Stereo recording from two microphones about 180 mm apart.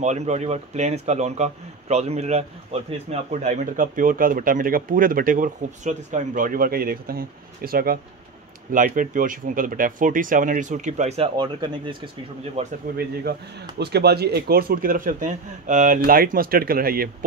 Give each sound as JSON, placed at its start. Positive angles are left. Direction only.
{"t": 0.0, "sound": "speech", "side_deg": -40}
{"t": 12.6, "sound": "speech", "side_deg": -35}
{"t": 12.9, "sound": "speech", "side_deg": -60}